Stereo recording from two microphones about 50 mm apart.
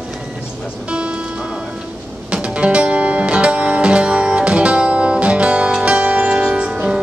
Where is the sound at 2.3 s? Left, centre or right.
Right.